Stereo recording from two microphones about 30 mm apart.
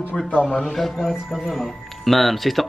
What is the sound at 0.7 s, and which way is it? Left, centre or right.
Speech, centre.